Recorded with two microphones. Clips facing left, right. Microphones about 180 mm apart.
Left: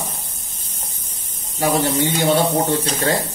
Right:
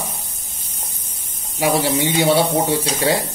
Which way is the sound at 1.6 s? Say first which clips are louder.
Even; 10° right (ahead or behind).